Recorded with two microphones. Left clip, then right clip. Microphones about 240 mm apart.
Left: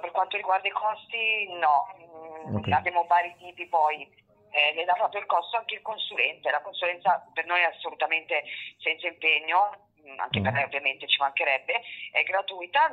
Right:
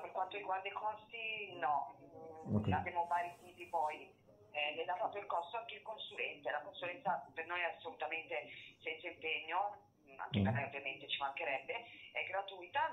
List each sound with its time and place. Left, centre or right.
0.0 s speech: left